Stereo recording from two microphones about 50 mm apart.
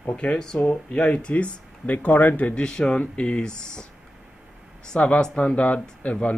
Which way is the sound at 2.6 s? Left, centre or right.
Centre.